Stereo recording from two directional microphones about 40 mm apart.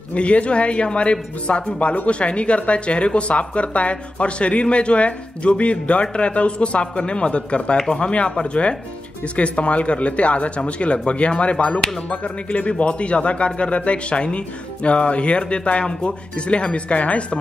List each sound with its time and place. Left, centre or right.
0.1 s speech: left